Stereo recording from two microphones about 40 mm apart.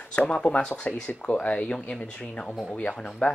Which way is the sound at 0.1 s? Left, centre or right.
Left.